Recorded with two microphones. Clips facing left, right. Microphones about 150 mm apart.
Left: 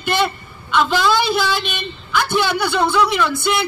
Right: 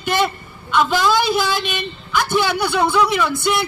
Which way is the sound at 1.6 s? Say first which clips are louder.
Right 1 dB; 5° right (ahead or behind).